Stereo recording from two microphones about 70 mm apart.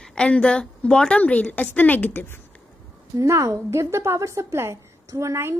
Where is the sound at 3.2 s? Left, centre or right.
Right.